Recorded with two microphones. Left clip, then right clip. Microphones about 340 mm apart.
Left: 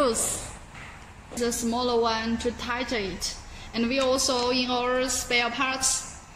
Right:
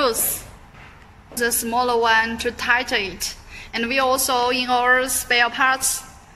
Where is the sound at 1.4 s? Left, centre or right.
Right.